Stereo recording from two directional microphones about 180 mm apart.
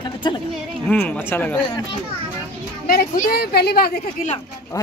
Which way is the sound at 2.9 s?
55° left (ahead or behind).